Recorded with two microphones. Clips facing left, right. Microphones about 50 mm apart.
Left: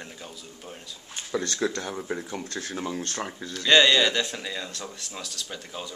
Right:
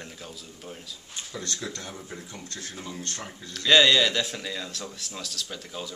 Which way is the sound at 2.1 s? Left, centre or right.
Left.